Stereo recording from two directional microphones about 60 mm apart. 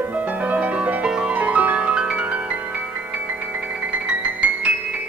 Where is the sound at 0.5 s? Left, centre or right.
Right.